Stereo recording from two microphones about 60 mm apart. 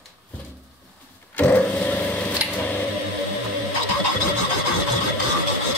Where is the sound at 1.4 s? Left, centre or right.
Left.